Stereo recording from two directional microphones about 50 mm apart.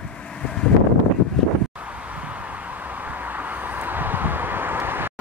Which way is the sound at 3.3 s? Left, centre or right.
Right.